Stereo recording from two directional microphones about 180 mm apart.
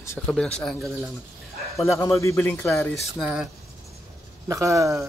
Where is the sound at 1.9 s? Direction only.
15° left (ahead or behind).